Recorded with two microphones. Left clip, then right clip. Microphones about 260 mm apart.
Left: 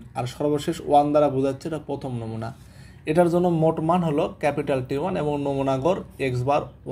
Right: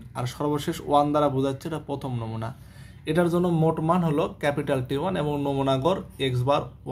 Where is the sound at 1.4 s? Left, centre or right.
Right.